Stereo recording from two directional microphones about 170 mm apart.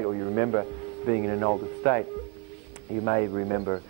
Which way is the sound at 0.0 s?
35° left (ahead or behind).